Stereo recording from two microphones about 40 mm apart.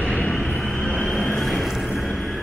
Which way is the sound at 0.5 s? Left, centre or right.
Centre.